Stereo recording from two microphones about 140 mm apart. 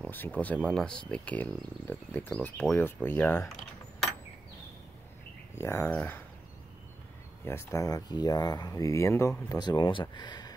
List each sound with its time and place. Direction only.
0.0 s speech: 10° left (ahead or behind)
3.4 s mechanisms: centre (ahead or behind)
5.6 s speech: 20° left (ahead or behind)
7.4 s speech: 20° left (ahead or behind)
9.5 s speech: 30° left (ahead or behind)